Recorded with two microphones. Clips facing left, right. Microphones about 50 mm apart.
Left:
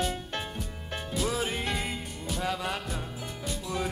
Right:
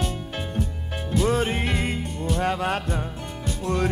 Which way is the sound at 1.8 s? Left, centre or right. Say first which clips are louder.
Right 8 dB; right.